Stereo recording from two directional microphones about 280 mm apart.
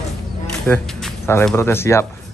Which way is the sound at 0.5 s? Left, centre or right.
Centre.